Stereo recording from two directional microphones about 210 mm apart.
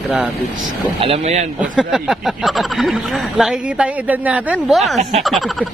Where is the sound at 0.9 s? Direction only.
30° right (ahead or behind).